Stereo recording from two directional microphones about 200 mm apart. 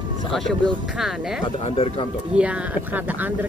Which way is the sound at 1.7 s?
30° left (ahead or behind).